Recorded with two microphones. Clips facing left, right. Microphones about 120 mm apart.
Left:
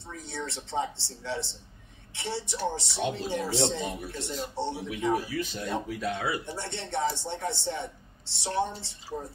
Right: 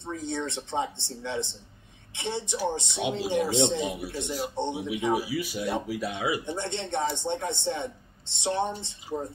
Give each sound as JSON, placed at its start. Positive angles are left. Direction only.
{"t": 0.0, "sound": "speech", "side_deg": -20}